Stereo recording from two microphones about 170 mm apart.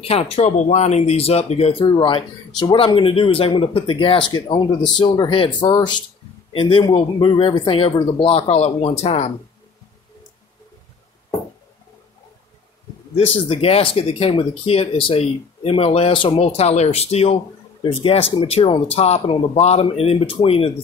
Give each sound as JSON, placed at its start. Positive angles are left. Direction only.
{"t": 0.0, "sound": "speech", "side_deg": 35}
{"t": 13.1, "sound": "speech", "side_deg": 35}